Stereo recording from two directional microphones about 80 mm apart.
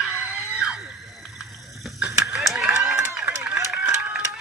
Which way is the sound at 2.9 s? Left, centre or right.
Right.